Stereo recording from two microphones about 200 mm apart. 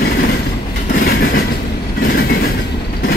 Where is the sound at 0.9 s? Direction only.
50° left (ahead or behind).